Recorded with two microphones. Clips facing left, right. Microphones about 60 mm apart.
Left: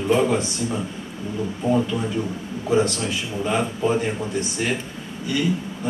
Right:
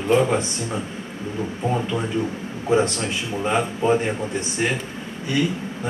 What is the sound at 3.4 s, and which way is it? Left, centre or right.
Speech, right.